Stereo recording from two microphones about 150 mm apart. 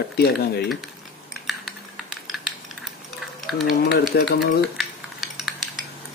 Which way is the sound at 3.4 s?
Centre (ahead or behind).